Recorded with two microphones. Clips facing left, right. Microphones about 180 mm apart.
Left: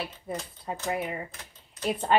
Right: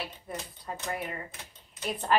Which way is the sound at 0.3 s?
20° left (ahead or behind).